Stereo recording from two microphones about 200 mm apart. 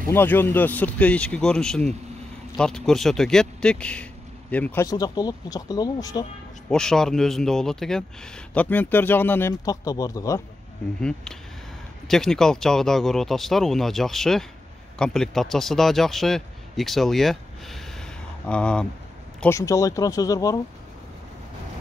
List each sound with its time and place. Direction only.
0.1 s a man's voice: 10° left (ahead or behind)
6.7 s a man's voice: 5° left (ahead or behind)
11.0 s a man's voice: 5° left (ahead or behind)